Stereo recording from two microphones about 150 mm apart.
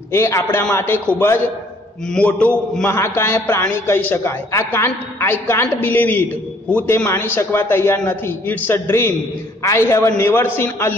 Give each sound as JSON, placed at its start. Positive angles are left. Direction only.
{"t": 0.1, "sound": "a man's voice", "side_deg": 15}